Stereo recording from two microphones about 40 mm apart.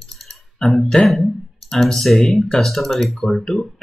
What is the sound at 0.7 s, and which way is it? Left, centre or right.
Speech, centre.